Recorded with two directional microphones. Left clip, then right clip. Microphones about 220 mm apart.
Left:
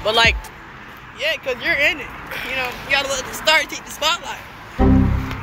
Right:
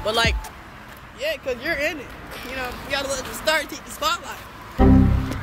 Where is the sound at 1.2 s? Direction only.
35° right (ahead or behind).